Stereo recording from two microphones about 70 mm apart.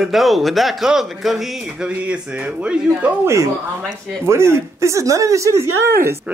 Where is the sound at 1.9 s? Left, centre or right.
Centre.